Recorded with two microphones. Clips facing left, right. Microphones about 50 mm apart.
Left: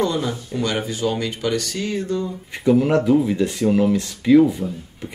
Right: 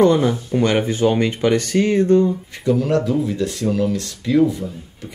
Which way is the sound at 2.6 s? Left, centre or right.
Centre.